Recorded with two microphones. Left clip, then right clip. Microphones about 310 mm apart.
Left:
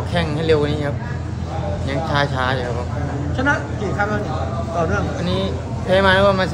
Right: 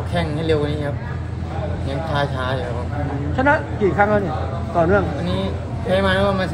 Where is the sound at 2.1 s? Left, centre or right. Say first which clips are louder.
Left 3 dB; centre.